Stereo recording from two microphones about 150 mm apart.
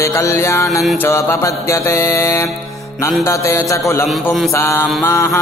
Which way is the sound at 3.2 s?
20° left (ahead or behind).